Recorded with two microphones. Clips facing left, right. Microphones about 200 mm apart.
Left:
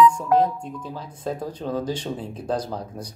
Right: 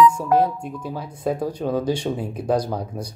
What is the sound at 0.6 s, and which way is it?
Speech, 10° right (ahead or behind).